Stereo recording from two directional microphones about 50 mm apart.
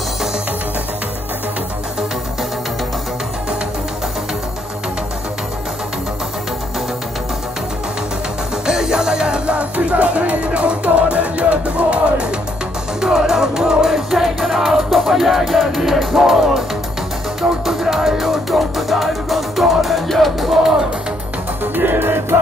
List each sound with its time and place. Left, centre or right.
8.6 s music: centre
13.0 s music: centre
21.7 s music: right